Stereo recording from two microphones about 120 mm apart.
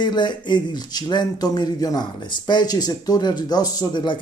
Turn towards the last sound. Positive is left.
turn(degrees=40)  # may be behind; listen again after turning